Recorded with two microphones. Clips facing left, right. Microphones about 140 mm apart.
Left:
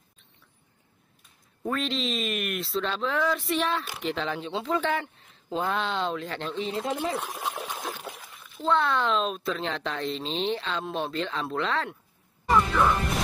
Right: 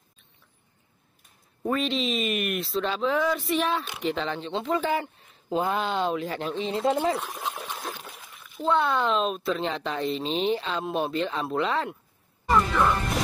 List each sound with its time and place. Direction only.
1.6 s speech: 5° right (ahead or behind)
6.5 s speech: 25° right (ahead or behind)
7.2 s splash: 10° left (ahead or behind)
8.4 s speech: centre (ahead or behind)
12.4 s music: centre (ahead or behind)